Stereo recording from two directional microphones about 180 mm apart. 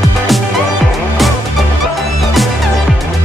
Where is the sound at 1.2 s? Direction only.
Centre (ahead or behind).